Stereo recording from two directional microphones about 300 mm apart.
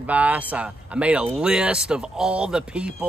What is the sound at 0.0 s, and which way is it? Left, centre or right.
Speech, centre.